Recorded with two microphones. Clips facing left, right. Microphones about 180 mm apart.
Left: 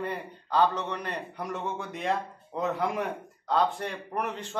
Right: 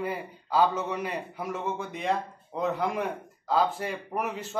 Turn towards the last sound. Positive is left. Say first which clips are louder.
# right 1 dB
turn(degrees=-5)  # may be behind; listen again after turning